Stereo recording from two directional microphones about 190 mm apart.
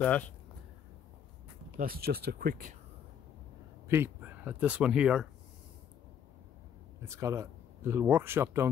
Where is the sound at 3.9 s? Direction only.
10° right (ahead or behind).